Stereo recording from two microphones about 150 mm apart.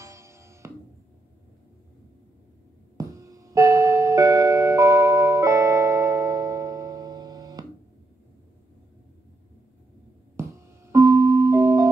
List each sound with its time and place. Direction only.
0.0 s music: 20° right (ahead or behind)
3.0 s music: 20° right (ahead or behind)
10.3 s music: 20° right (ahead or behind)